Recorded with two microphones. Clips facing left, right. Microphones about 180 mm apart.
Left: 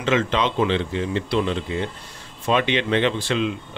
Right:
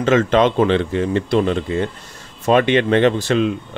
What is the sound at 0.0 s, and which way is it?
Speech, 45° right (ahead or behind).